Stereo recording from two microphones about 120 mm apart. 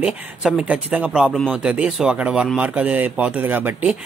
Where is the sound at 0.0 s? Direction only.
5° right (ahead or behind).